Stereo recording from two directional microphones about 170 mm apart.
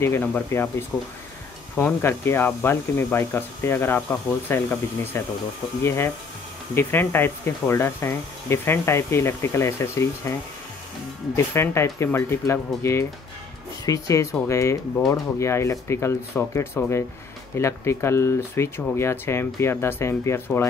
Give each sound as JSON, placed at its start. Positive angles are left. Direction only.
{"t": 0.0, "sound": "speech", "side_deg": 10}
{"t": 11.3, "sound": "speech", "side_deg": 15}